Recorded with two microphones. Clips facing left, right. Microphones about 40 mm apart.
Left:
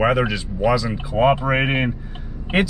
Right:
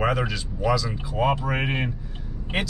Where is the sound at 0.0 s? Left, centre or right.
Left.